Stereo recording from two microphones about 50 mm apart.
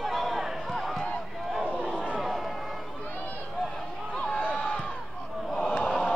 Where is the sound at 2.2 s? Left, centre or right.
Centre.